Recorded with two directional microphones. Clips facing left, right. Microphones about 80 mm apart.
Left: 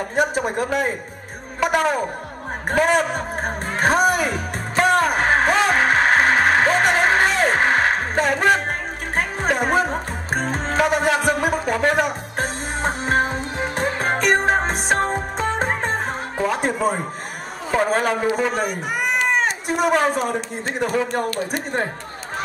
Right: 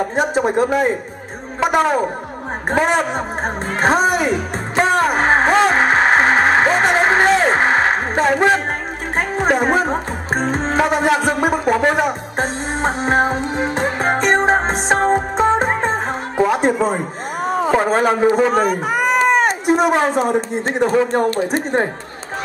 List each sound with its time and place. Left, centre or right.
0.1 s speech: right
4.7 s music: right
16.4 s a sound: right
17.7 s speech: right
19.6 s speech: right
20.3 s speech: right